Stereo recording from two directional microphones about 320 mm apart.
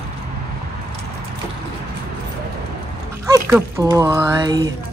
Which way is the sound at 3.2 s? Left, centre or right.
Centre.